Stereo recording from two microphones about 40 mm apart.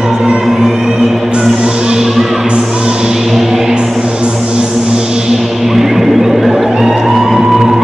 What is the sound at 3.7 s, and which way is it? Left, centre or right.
Music, right.